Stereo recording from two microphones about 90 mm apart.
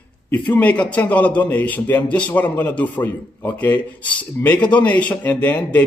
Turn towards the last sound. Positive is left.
turn(degrees=15)  # may be behind; listen again after turning